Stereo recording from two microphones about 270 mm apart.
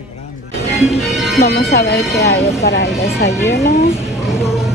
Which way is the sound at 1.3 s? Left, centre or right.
Left.